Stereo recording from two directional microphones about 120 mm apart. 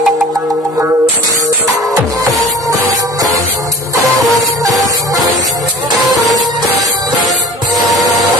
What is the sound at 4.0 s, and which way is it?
Music, 30° right (ahead or behind).